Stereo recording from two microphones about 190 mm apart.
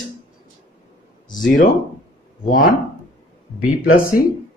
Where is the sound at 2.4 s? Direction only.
45° left (ahead or behind).